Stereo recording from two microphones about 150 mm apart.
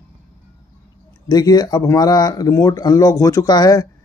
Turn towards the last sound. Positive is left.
turn(degrees=25)  # may be behind; listen again after turning